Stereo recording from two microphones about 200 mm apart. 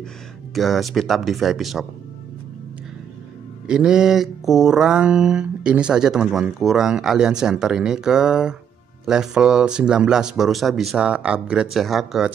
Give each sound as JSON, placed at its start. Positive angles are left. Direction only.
{"t": 0.6, "sound": "mantra", "side_deg": 0}
{"t": 3.6, "sound": "mantra", "side_deg": -5}